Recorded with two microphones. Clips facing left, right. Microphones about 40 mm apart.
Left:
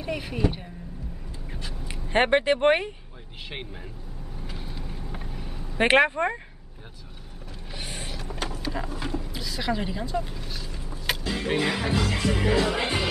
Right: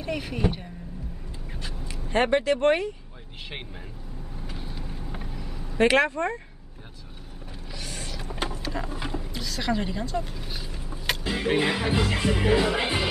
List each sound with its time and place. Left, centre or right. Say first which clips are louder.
0.0 s speech: right 1 dB; centre
1.5 s a sound: even; centre
2.1 s speech: left 1 dB; left
4.4 s vehicle: even; centre
5.3 s vehicle: even; centre
5.8 s speech: left 1 dB; left
7.7 s mechanisms: left 1 dB; left
8.2 s vehicle: right 3 dB; centre
8.5 s a sound: even; centre
9.3 s speech: right 2 dB; centre
10.5 s vehicle: even; centre
11.2 s speech: right 2 dB; centre